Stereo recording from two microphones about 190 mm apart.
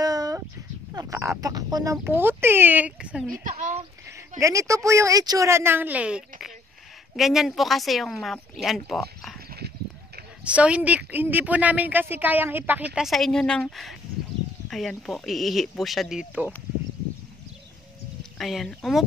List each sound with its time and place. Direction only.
0.0 s a sound: 20° right (ahead or behind)
0.9 s speech: 15° right (ahead or behind)
3.4 s speech: 40° right (ahead or behind)
4.4 s speech: 15° right (ahead or behind); by 9.4 s centre (ahead or behind)
9.6 s clip-clop: 60° right (ahead or behind)
10.4 s speech: 5° right (ahead or behind)
18.4 s speech: centre (ahead or behind)